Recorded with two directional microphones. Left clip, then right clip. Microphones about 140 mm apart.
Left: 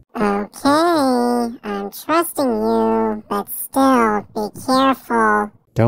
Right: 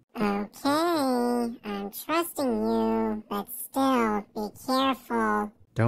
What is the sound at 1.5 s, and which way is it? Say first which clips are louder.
Female singing: left 9 dB; 40° left (ahead or behind).